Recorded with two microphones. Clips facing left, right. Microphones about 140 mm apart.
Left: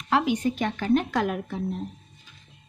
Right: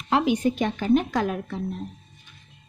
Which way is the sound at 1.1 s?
5° left (ahead or behind).